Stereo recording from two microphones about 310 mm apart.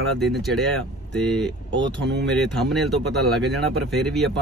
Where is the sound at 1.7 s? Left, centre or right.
Right.